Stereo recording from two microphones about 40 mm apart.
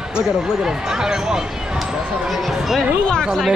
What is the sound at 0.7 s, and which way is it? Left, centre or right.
Speech, centre.